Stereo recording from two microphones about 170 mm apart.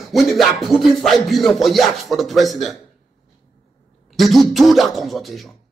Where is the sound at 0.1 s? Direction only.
Centre (ahead or behind).